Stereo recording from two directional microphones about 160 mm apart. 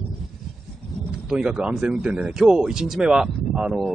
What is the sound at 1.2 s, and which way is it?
Speech, 5° right (ahead or behind).